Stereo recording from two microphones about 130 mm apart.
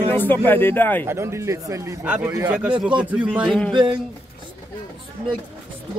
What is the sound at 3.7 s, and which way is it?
Speech, 40° right (ahead or behind).